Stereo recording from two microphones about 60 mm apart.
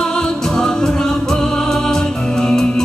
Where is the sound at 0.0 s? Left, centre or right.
Centre.